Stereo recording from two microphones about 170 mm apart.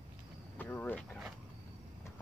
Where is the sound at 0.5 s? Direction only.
10° left (ahead or behind).